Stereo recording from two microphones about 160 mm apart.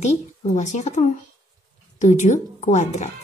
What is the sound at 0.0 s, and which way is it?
A child's voice, 45° left (ahead or behind).